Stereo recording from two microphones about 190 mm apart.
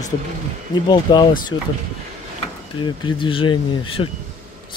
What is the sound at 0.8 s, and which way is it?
Speech, 25° left (ahead or behind).